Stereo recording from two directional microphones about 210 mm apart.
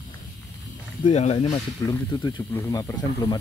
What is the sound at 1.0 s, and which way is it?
Speech, 35° left (ahead or behind).